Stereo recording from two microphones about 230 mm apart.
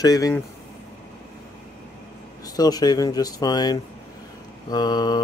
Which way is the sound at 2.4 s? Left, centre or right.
Centre.